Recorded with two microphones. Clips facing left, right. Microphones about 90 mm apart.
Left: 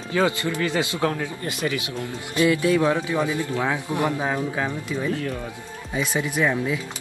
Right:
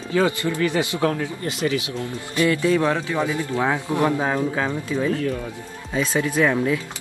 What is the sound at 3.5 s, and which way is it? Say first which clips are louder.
Speech: right 3 dB; 20° right (ahead or behind).